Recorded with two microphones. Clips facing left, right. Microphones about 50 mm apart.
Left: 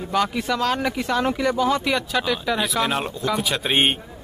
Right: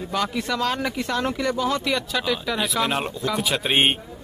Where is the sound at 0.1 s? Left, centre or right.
Centre.